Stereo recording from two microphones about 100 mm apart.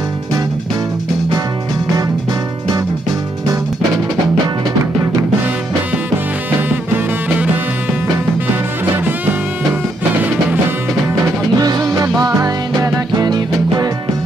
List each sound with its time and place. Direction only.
8.9 s music: 20° right (ahead or behind)
11.5 s music: 40° right (ahead or behind)